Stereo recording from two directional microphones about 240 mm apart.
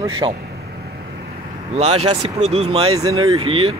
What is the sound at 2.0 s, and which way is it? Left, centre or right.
Speech, right.